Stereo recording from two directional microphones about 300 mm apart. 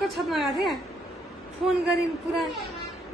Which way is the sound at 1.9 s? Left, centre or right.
Centre.